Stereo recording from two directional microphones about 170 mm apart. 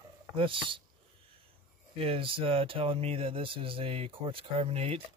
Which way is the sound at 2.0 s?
35° right (ahead or behind).